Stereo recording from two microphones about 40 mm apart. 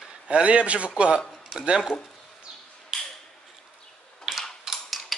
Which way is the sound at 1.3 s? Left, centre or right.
Centre.